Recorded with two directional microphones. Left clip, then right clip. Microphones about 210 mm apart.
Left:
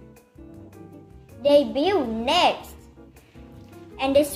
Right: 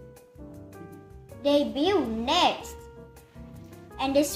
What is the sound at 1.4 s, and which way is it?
A child's voice, 20° left (ahead or behind).